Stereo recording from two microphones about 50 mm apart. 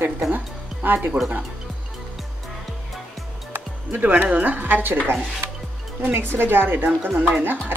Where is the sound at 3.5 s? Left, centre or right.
Right.